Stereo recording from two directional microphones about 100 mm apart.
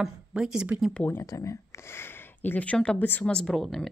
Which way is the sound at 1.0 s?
25° left (ahead or behind).